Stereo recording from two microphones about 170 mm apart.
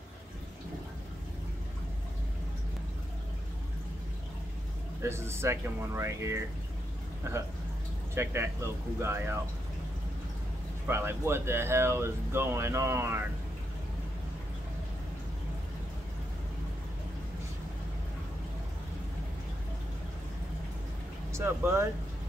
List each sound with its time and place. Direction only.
5.0 s speech: 15° right (ahead or behind)
10.9 s speech: 15° right (ahead or behind)
21.3 s speech: 15° right (ahead or behind)